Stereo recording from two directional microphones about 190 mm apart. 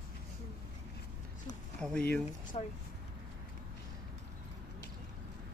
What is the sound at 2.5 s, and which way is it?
Speech, 35° left (ahead or behind).